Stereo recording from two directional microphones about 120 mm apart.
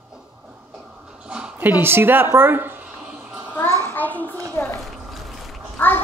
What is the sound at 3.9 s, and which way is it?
Child singing, 15° left (ahead or behind).